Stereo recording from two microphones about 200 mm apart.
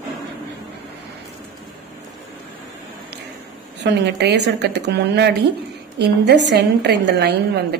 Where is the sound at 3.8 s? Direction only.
60° right (ahead or behind).